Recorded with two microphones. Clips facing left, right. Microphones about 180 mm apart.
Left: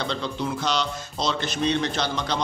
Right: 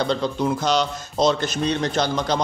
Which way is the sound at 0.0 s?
45° right (ahead or behind).